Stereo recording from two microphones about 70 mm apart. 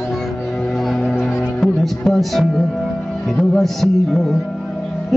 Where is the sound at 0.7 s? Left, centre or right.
Centre.